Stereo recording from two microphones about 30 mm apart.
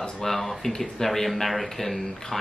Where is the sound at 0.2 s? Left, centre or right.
Centre.